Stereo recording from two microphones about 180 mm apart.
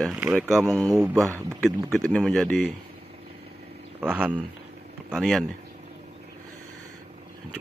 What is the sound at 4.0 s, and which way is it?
Speech, 5° right (ahead or behind).